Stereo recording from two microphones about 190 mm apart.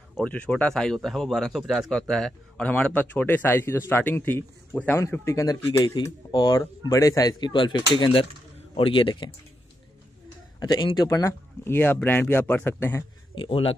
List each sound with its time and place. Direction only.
0.2 s a man's voice: 5° left (ahead or behind); by 9.3 s 25° left (ahead or behind)
10.6 s speech: 20° left (ahead or behind)
13.3 s speech: 30° left (ahead or behind)